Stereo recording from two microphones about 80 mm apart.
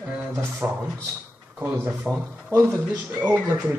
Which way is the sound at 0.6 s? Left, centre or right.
Right.